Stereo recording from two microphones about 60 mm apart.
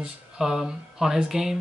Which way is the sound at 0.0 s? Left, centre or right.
Centre.